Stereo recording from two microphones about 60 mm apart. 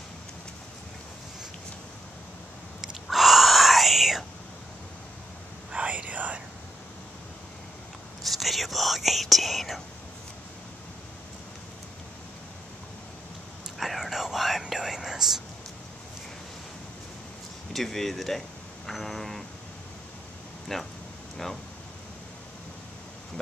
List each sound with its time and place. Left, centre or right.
2.8 s whispering: centre
5.7 s whispering: right
8.3 s whispering: centre
13.7 s whispering: centre
17.7 s a sound: centre
20.7 s a sound: centre